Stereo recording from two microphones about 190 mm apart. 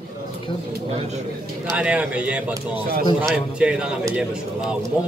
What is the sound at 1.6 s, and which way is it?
A man's voice, 5° right (ahead or behind).